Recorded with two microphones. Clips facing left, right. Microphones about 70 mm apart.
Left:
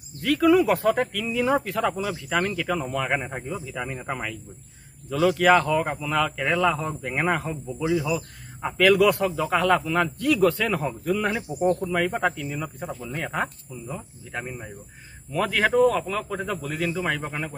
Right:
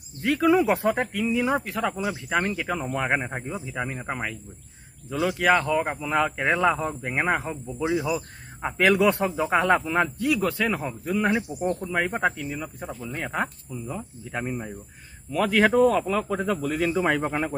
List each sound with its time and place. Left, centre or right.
0.2 s speech: right; by 5.8 s centre
5.8 s speech: centre
6.9 s speech: centre
16.9 s speech: centre